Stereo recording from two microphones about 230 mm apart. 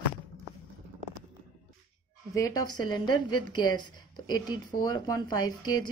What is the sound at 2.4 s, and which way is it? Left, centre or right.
A woman's voice, centre.